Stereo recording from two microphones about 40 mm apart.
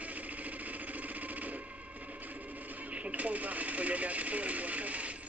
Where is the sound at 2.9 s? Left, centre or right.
Right.